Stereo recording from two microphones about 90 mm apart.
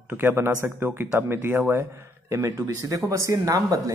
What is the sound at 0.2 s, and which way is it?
A man's voice, 20° right (ahead or behind).